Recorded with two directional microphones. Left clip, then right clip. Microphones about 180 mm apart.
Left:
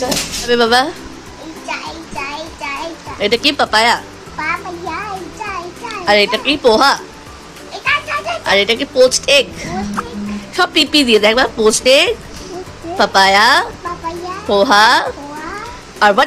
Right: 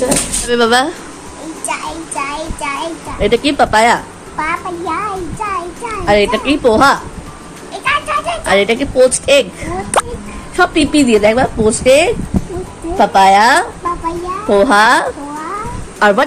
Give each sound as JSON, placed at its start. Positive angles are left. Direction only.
{"t": 0.0, "sound": "speech", "side_deg": 0}
{"t": 1.7, "sound": "child singing", "side_deg": -5}
{"t": 3.2, "sound": "a child's voice", "side_deg": 0}